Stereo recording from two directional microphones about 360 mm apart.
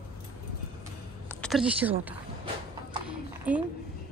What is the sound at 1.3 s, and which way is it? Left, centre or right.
Speech, centre.